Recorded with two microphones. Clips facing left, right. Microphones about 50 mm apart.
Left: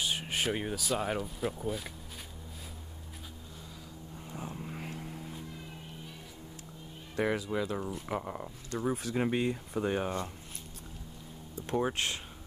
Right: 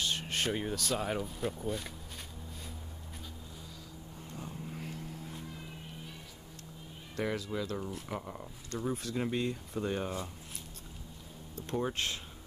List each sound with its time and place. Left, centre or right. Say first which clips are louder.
0.0 s speech: left 1 dB; centre
4.3 s vehicle: left 3 dB; centre
4.6 s vehicle: left 1 dB; left
7.2 s speech: left 4 dB; centre
8.6 s speech: left 3 dB; centre
9.1 s speech: left 4 dB; left
9.4 s speech: left 3 dB; centre
11.5 s speech: left 3 dB; centre